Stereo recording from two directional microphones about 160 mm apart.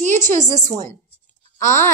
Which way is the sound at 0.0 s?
50° right (ahead or behind).